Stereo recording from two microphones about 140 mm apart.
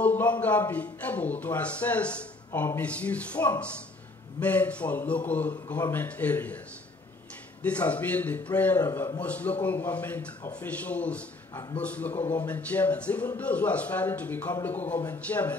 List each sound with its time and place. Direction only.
0.0 s speech: 10° left (ahead or behind)
7.6 s speech: 10° left (ahead or behind)